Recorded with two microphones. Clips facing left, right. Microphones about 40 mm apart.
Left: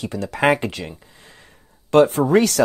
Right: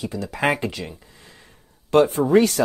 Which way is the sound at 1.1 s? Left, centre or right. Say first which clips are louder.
Left 1 dB; left.